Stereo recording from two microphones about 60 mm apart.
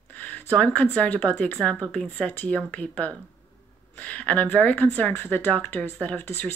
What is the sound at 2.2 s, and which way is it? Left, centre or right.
Speech, left.